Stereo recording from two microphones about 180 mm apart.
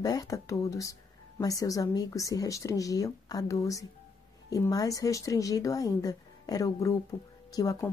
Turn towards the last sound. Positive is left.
turn(degrees=20)  # may be behind; listen again after turning